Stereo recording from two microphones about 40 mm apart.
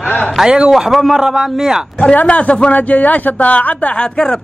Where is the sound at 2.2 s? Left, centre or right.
Left.